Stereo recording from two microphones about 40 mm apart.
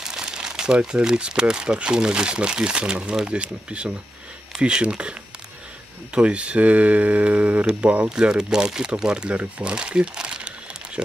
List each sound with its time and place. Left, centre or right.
0.0 s speech: centre
6.1 s speech: right
8.1 s speech: right